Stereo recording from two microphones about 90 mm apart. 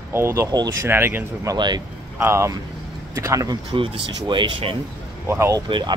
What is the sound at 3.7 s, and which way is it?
Speech, 80° right.